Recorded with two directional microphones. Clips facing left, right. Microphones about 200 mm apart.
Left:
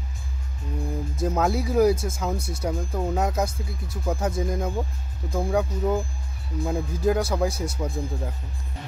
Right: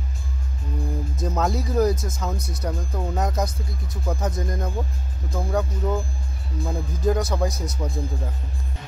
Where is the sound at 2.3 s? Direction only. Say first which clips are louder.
Left 1 dB; 30° left (ahead or behind).